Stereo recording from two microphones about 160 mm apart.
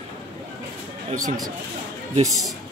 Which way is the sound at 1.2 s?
25° right (ahead or behind).